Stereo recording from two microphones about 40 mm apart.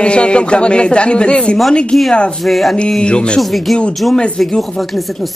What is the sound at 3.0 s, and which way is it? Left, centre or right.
Speech, left.